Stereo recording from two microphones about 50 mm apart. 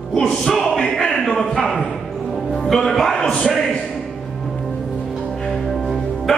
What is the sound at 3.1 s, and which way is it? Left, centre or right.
Speech, centre.